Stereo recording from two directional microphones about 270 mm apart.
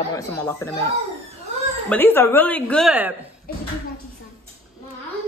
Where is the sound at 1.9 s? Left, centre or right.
Centre.